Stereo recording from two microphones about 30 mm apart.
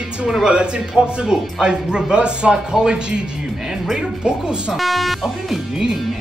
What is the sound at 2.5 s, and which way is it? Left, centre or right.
Speech, right.